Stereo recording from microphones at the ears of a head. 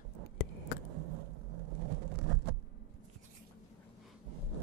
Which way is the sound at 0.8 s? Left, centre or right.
Right.